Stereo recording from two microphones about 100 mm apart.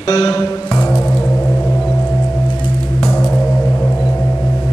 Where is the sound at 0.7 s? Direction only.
15° left (ahead or behind).